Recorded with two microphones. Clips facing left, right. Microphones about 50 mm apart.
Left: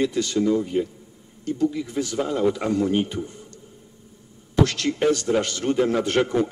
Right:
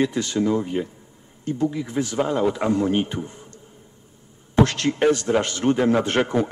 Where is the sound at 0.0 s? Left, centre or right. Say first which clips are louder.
Even; right.